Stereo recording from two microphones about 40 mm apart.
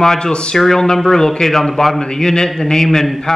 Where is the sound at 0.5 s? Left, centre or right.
Centre.